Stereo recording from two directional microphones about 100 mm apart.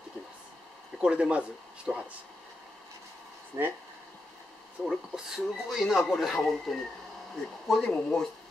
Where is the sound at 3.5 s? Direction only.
40° right (ahead or behind).